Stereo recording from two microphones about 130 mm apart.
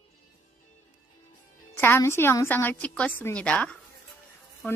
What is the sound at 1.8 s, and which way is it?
A woman's voice, 20° left (ahead or behind).